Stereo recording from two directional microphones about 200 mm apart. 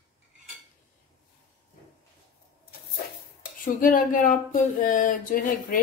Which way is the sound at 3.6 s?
40° left (ahead or behind).